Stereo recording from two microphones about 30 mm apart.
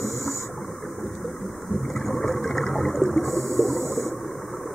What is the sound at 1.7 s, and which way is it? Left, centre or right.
Boat, centre.